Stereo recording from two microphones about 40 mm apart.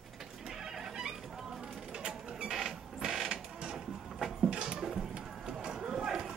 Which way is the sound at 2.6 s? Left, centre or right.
Centre.